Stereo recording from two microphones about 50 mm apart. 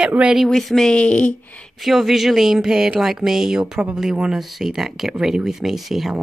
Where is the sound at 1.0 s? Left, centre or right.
Left.